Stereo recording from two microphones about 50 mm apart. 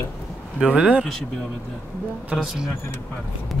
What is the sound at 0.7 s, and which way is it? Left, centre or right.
Speech, right.